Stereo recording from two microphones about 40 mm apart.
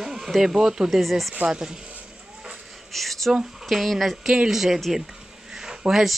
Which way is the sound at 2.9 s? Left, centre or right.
Centre.